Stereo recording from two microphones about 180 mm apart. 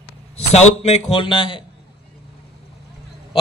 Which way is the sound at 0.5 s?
35° left (ahead or behind).